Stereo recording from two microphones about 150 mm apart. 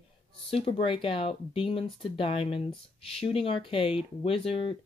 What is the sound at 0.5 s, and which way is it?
Speech, 40° left (ahead or behind).